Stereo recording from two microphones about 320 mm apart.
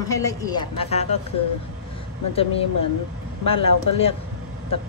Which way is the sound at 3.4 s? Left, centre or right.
Centre.